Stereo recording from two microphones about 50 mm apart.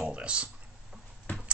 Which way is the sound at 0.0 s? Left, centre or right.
Right.